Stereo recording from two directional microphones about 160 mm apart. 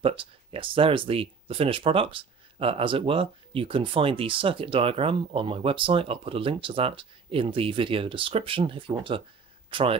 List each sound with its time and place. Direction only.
0.0 s speech: 35° right (ahead or behind)